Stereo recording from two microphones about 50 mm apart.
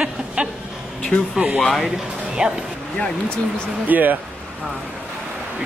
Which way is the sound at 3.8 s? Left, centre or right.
Right.